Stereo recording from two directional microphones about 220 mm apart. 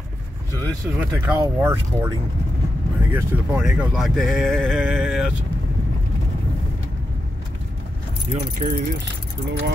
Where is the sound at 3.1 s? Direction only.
5° right (ahead or behind).